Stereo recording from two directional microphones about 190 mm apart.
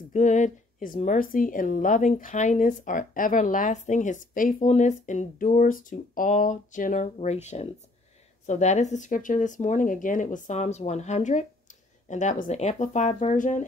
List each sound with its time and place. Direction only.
0.1 s a woman's voice: 40° left (ahead or behind)